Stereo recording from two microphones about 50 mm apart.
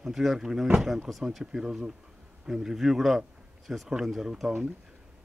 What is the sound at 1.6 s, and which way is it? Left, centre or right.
Speech, centre.